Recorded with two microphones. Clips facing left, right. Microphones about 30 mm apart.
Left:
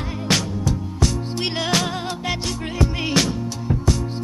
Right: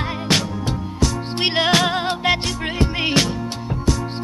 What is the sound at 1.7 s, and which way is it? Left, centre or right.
Music, right.